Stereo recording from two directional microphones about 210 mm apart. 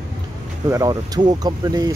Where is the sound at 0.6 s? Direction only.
15° right (ahead or behind).